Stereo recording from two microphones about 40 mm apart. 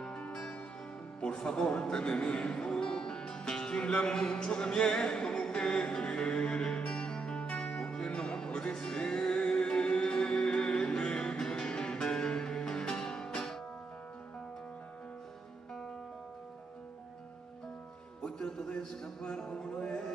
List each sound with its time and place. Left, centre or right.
1.2 s music: left
18.2 s music: centre